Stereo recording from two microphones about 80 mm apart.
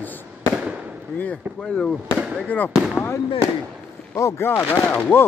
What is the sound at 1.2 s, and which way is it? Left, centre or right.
Speech, centre.